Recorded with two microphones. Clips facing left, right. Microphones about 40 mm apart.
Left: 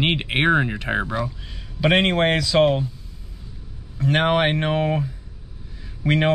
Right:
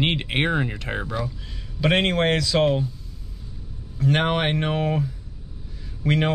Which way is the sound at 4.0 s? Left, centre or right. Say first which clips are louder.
Left 3 dB; centre.